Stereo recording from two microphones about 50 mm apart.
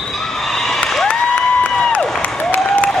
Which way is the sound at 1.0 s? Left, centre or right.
Centre.